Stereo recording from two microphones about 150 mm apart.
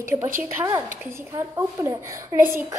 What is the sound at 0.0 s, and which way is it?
A woman's voice, 15° right (ahead or behind).